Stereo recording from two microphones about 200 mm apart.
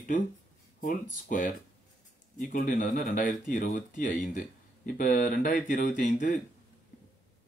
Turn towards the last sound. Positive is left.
turn(degrees=40)  # may be behind; listen again after turning